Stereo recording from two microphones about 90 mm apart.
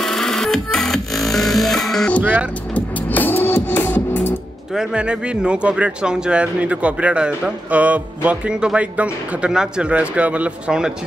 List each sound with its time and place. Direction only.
0.0 s music: centre (ahead or behind)
2.7 s music: 20° left (ahead or behind)
4.7 s speech: 10° right (ahead or behind)